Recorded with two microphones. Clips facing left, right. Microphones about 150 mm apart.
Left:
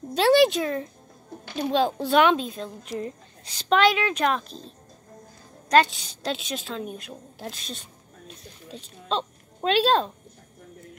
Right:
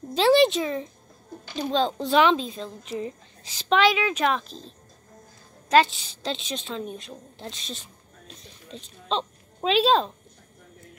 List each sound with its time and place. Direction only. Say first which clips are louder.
0.1 s a woman's voice: even; centre (ahead or behind)